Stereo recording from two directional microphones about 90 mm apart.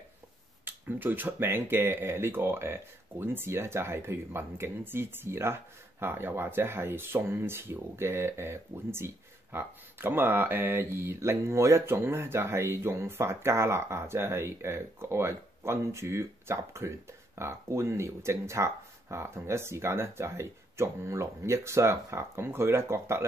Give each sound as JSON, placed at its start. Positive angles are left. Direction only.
{"t": 0.7, "sound": "speech", "side_deg": -20}